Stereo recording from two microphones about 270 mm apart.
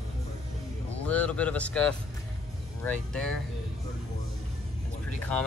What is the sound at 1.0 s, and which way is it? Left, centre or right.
Speech, centre.